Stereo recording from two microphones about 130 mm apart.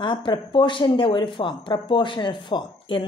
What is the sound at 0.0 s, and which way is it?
Speech, 40° left (ahead or behind).